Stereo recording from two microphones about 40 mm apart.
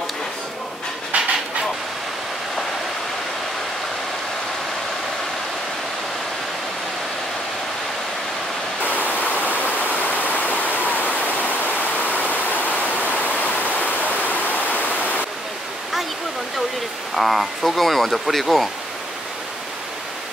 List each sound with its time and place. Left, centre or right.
1.1 s train: right
8.8 s waterfall: left
11.3 s pink noise: left
17.1 s speech: centre